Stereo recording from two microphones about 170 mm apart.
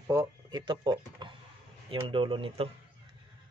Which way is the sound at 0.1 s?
20° right (ahead or behind).